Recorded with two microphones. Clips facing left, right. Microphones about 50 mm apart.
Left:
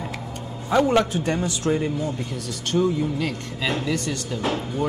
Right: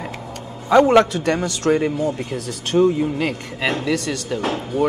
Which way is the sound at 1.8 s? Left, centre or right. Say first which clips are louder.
Right 5 dB; right.